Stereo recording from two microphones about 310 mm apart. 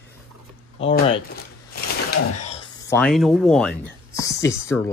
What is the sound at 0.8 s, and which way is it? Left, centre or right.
Speech, left.